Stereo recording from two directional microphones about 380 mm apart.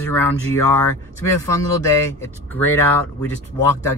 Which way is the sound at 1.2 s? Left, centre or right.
Centre.